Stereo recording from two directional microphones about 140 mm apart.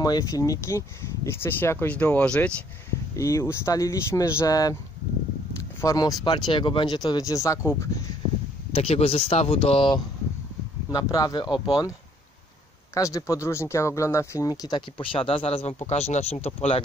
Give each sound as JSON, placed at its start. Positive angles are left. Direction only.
{"t": 0.0, "sound": "speech", "side_deg": 25}
{"t": 3.2, "sound": "speech", "side_deg": 20}
{"t": 8.7, "sound": "speech", "side_deg": 45}
{"t": 10.9, "sound": "speech", "side_deg": 25}
{"t": 12.9, "sound": "speech", "side_deg": 25}